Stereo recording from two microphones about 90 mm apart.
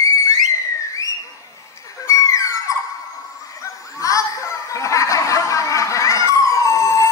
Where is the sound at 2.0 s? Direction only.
35° left (ahead or behind).